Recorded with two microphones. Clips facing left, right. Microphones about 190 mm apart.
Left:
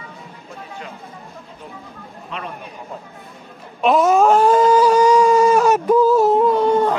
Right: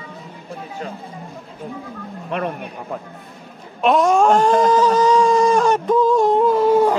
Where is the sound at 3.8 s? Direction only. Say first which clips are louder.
Left 1 dB; centre (ahead or behind).